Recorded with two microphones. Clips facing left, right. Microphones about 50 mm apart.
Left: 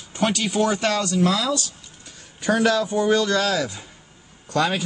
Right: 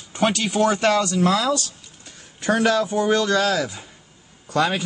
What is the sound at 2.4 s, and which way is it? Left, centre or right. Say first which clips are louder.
Speech: even; right.